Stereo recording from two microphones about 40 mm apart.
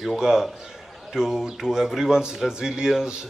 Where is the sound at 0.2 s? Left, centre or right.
Centre.